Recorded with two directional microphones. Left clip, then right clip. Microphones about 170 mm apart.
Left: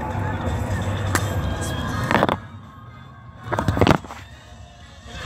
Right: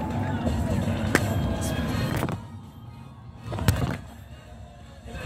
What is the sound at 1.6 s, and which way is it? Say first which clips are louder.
Music: left 3 dB; 20° right (ahead or behind).